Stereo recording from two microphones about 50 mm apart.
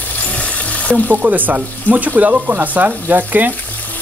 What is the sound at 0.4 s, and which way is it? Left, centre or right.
Frying, left.